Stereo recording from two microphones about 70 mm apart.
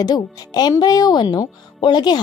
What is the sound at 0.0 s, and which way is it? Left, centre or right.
Speech, left.